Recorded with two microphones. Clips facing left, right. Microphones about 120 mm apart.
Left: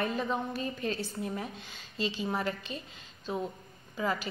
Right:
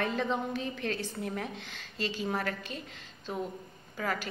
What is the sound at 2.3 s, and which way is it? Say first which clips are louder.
Speech: even; 15° left (ahead or behind).